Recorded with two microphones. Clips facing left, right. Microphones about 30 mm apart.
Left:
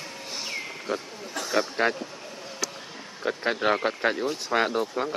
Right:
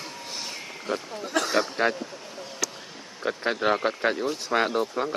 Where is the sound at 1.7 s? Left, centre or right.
Centre.